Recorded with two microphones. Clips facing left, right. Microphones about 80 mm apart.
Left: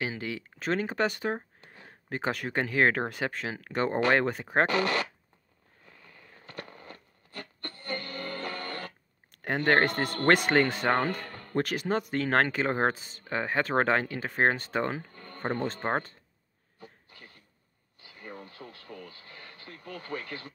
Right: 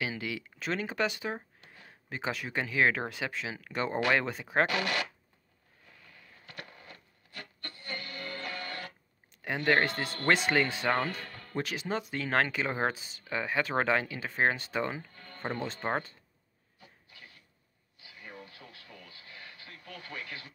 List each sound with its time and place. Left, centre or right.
0.0 s speech: left
5.9 s rub: left
16.8 s a sound: left